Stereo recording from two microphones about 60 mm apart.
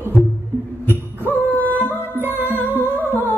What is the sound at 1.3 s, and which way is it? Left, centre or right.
Music, left.